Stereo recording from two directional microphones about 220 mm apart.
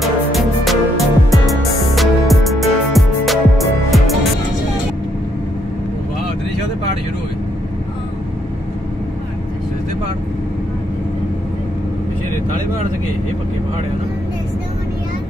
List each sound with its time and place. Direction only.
0.0 s music: centre (ahead or behind)